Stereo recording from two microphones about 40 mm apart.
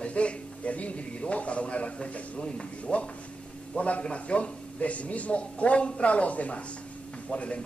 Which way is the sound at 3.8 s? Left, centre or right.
Left.